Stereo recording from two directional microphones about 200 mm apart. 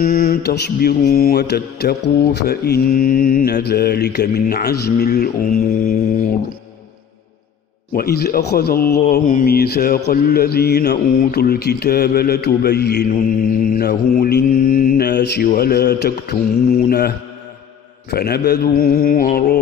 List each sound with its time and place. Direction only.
0.0 s speech: 50° left (ahead or behind)
7.9 s speech: 50° left (ahead or behind)
13.1 s speech: 40° left (ahead or behind)
18.1 s speech: 50° left (ahead or behind)